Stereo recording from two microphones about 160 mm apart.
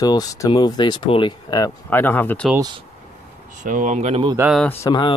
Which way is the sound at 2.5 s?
25° right (ahead or behind).